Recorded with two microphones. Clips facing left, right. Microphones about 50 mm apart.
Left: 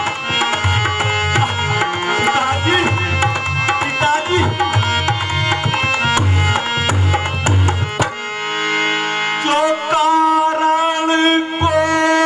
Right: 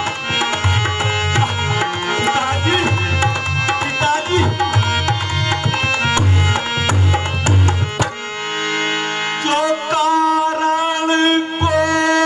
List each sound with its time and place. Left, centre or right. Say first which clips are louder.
0.4 s tabla: left 2 dB; centre
9.5 s music: left 1 dB; centre